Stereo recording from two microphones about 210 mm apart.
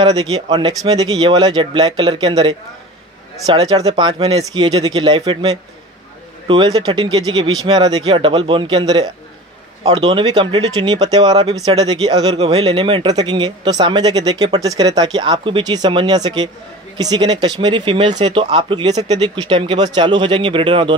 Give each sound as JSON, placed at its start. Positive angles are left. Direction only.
{"t": 0.0, "sound": "a man's voice", "side_deg": -20}